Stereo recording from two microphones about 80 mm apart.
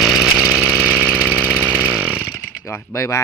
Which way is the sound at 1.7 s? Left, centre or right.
Centre.